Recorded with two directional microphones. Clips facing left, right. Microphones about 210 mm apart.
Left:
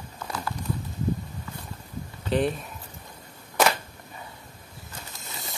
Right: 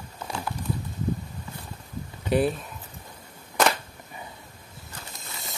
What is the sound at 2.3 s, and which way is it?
Speech, 5° right (ahead or behind).